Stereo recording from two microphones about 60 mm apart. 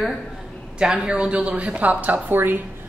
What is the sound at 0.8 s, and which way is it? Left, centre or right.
A woman's voice, centre.